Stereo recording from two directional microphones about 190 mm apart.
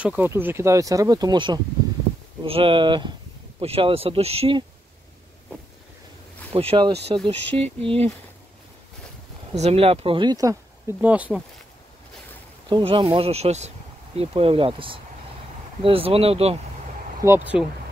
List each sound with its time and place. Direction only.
0.0 s speech: 10° right (ahead or behind); by 4.6 s 30° right (ahead or behind)
6.5 s speech: 30° right (ahead or behind)
9.6 s speech: 30° right (ahead or behind); by 11.4 s 5° right (ahead or behind)
12.6 s speech: 25° right (ahead or behind)
17.2 s speech: 15° right (ahead or behind)